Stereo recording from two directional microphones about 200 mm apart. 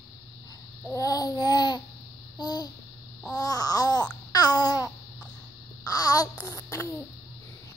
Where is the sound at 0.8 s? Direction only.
15° left (ahead or behind).